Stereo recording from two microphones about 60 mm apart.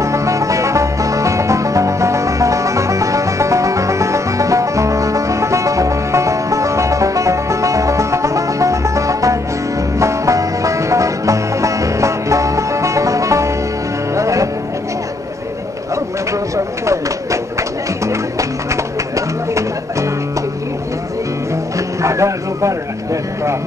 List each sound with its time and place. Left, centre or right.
0.0 s music: right
16.3 s a sound: right
21.7 s music: right